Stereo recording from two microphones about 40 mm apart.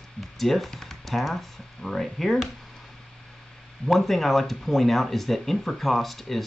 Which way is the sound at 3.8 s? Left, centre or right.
Centre.